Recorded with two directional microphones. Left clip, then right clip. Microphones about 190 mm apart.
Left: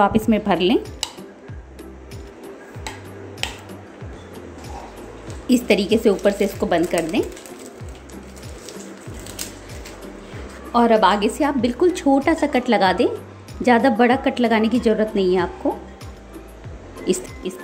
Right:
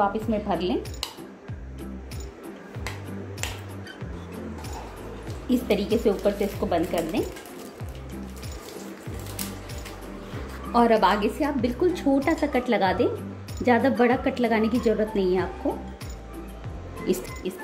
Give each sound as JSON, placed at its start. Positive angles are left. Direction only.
{"t": 0.0, "sound": "a woman's voice", "side_deg": 25}
{"t": 5.5, "sound": "a woman's voice", "side_deg": 20}
{"t": 10.7, "sound": "a woman's voice", "side_deg": 10}
{"t": 17.0, "sound": "speech", "side_deg": 10}